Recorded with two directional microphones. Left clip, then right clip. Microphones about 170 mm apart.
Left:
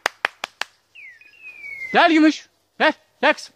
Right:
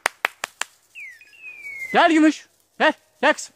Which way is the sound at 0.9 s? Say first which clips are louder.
Right 4 dB; 50° right (ahead or behind).